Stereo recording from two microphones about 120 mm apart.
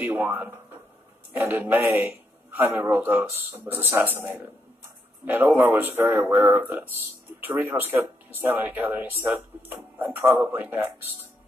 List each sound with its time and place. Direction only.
0.0 s a man's voice: 15° right (ahead or behind)